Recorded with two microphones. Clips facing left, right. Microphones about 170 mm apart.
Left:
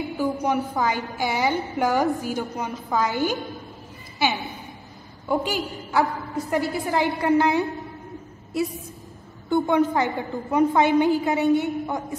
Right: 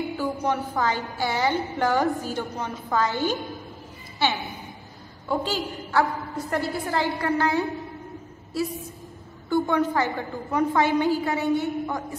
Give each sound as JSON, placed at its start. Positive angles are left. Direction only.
{"t": 0.2, "sound": "a woman's voice", "side_deg": 15}
{"t": 3.1, "sound": "a woman's voice", "side_deg": -25}
{"t": 5.3, "sound": "a woman's voice", "side_deg": 15}
{"t": 9.5, "sound": "a woman's voice", "side_deg": 20}